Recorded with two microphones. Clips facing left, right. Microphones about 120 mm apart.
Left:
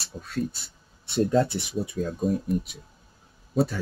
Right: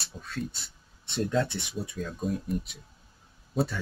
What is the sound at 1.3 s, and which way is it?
Speech, 40° left (ahead or behind).